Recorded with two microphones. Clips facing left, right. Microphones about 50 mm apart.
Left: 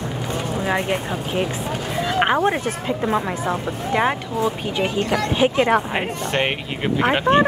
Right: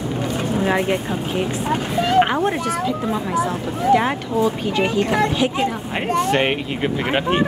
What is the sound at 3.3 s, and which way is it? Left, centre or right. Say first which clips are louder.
Speech: right 2 dB; centre.